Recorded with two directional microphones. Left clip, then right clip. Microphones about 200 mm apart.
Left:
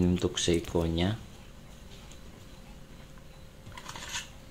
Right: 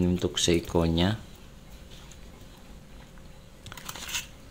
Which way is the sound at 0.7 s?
20° right (ahead or behind).